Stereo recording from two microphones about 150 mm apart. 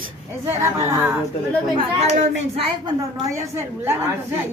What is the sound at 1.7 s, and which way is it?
Speech, 45° right (ahead or behind).